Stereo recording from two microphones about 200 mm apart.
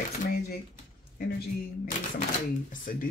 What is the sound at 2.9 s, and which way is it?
Speech, 45° left (ahead or behind).